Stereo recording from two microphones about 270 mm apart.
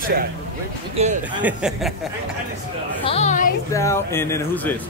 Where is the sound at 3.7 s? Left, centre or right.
Centre.